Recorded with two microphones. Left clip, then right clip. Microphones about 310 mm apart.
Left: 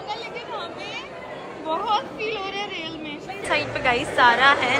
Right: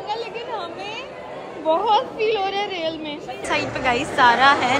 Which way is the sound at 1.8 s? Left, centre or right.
Left.